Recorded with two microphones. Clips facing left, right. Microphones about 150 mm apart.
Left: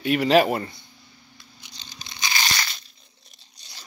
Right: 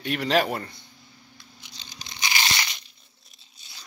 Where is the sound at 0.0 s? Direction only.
5° left (ahead or behind).